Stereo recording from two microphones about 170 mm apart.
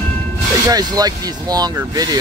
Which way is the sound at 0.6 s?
20° right (ahead or behind).